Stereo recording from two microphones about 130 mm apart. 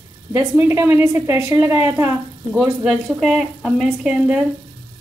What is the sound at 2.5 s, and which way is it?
Speech, 5° right (ahead or behind).